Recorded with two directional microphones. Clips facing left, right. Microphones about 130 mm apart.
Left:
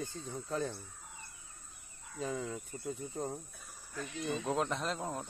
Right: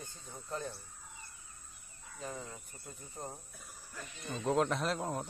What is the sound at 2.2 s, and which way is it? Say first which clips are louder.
Speech: left 6 dB; 90° left.